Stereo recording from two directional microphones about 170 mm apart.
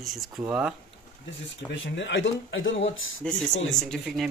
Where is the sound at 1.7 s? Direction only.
90° left.